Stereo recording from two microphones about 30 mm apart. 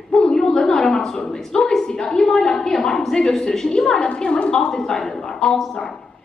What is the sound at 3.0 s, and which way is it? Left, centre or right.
Speech, centre.